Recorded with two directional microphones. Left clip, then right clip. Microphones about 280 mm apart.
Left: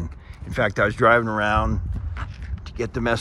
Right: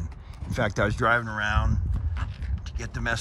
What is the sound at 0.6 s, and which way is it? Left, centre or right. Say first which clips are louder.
Speech: left 6 dB; centre.